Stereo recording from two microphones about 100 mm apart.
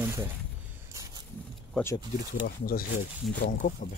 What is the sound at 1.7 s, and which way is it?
Speech, 10° left (ahead or behind).